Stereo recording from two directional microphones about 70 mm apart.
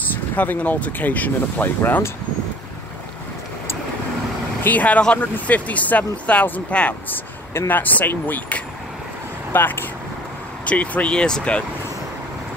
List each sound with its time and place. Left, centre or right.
0.4 s speech: left
4.6 s speech: left
10.6 s speech: centre